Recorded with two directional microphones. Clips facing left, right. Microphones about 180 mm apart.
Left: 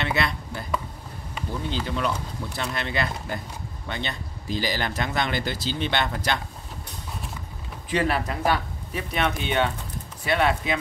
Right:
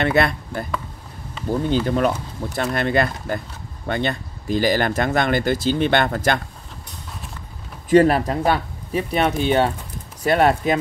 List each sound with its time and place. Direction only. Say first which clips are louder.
0.0 s speech: right 8 dB; 50° right (ahead or behind)
7.9 s speech: right 10 dB; 40° right (ahead or behind)